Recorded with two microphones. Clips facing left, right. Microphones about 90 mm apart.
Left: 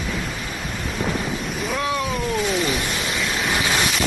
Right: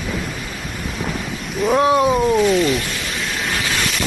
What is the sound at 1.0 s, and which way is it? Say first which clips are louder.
Thunder: left 3 dB; centre (ahead or behind).